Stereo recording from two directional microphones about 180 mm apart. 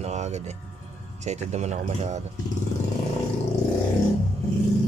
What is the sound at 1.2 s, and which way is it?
Speech, 40° right (ahead or behind).